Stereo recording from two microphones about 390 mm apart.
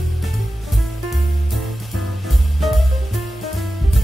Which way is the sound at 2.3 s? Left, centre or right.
Centre.